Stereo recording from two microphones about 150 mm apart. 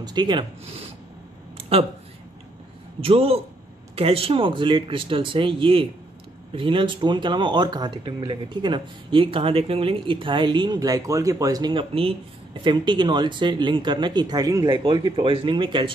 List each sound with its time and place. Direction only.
0.0 s speech: 30° right (ahead or behind)
1.6 s a sound: 40° right (ahead or behind)
3.0 s speech: 40° right (ahead or behind)